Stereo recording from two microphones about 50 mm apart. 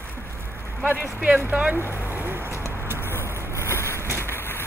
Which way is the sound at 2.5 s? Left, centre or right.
Right.